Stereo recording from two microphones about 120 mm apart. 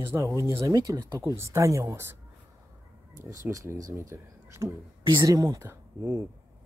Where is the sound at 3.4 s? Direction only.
25° right (ahead or behind).